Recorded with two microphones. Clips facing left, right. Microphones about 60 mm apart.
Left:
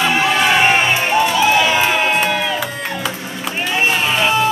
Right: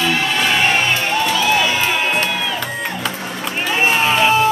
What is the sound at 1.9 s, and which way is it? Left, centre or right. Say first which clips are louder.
Music: left 2 dB; centre.